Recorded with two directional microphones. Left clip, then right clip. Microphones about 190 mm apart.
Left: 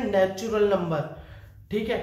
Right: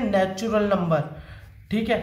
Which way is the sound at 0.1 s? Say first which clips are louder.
Even; 10° left (ahead or behind).